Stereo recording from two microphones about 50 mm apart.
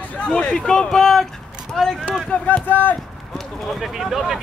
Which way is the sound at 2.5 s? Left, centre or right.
Left.